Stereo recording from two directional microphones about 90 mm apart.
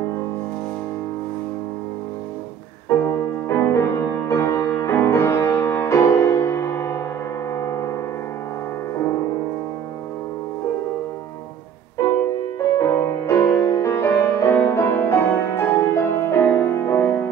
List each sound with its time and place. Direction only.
3.4 s music: 30° left (ahead or behind)
7.5 s music: 35° left (ahead or behind)
12.7 s music: 25° left (ahead or behind)